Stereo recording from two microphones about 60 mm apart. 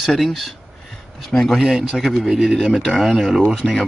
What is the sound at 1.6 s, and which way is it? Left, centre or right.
Speech, centre.